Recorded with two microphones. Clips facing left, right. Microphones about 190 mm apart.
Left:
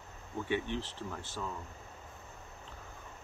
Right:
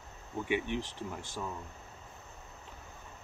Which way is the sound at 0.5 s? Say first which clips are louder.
Right 2 dB; 15° right (ahead or behind).